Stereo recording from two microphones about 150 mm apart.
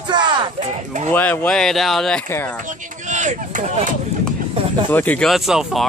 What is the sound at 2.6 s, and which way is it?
Speech, 55° right (ahead or behind).